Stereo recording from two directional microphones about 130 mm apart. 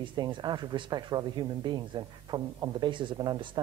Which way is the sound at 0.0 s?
35° right (ahead or behind).